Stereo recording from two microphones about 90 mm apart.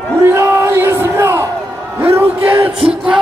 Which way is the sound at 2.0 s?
25° right (ahead or behind).